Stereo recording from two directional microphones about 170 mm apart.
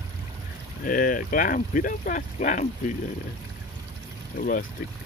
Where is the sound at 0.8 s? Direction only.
55° left (ahead or behind).